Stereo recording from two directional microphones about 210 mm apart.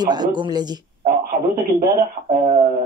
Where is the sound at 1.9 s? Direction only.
30° right (ahead or behind).